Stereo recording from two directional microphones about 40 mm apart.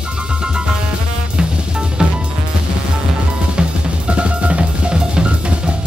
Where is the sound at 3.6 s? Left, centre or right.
Right.